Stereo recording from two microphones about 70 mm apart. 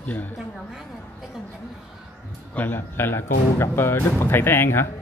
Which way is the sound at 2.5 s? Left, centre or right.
Left.